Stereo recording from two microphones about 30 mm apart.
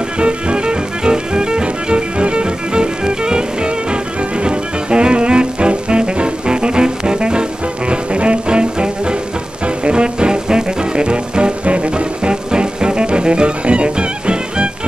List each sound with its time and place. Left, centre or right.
0.2 s music: right